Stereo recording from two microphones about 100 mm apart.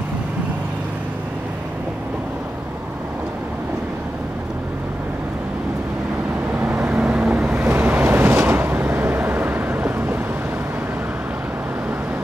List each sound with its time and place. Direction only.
6.6 s vehicle: 15° right (ahead or behind)